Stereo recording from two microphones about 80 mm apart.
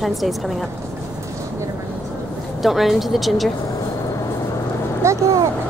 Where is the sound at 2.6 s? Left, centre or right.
Centre.